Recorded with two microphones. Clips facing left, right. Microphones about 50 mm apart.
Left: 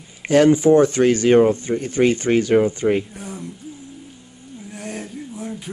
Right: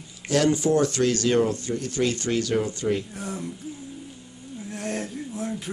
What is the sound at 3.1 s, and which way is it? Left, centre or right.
Speech, centre.